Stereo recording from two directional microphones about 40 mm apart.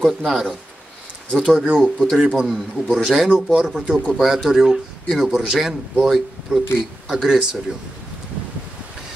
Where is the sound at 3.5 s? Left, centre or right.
Centre.